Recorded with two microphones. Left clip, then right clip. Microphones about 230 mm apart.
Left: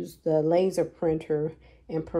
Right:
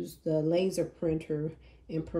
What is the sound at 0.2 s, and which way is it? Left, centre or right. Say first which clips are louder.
Speech: left 6 dB; centre.